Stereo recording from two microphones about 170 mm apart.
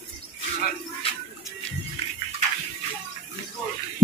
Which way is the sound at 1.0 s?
35° left (ahead or behind).